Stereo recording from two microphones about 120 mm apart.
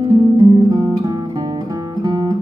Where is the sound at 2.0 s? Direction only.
40° right (ahead or behind).